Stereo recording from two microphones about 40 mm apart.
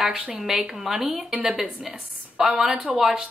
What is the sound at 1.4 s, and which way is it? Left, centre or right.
Speech, right.